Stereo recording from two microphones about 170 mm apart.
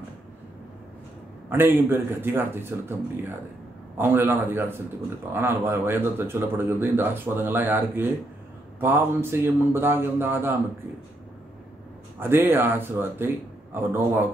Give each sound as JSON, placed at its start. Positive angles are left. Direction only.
{"t": 1.5, "sound": "speech", "side_deg": -15}
{"t": 12.2, "sound": "speech", "side_deg": -15}